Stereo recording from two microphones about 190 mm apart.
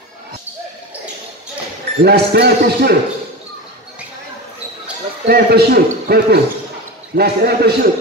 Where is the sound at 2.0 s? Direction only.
60° right (ahead or behind).